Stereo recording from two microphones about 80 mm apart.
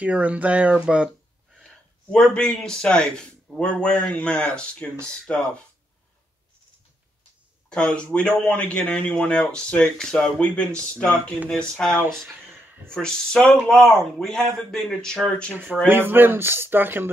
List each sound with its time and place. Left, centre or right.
0.0 s speech: centre
2.1 s a man's voice: centre
7.7 s a man's voice: centre
15.5 s speech: right